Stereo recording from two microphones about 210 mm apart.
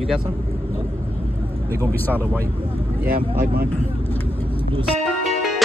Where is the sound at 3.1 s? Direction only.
45° right (ahead or behind).